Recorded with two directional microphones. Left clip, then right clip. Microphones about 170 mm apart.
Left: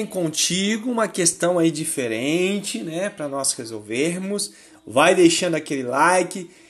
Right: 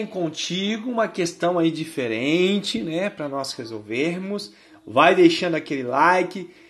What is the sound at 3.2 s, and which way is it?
Speech, 10° left (ahead or behind).